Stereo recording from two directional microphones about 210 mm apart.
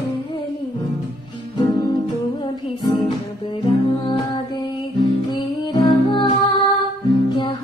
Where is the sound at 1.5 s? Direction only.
20° left (ahead or behind).